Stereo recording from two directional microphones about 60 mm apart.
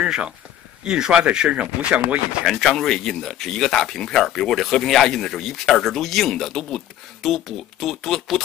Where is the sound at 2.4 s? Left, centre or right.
Centre.